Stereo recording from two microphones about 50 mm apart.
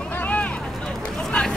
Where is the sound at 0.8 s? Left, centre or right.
Centre.